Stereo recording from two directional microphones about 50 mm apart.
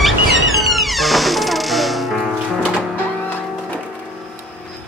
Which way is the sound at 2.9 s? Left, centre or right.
Left.